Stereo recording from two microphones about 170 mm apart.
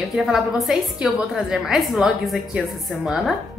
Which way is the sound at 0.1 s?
5° right (ahead or behind).